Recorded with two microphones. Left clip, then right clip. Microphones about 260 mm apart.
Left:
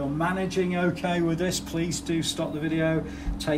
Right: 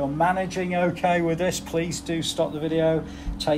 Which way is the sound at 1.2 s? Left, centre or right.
Centre.